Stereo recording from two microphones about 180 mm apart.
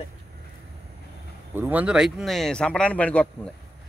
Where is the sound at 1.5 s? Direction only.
10° right (ahead or behind).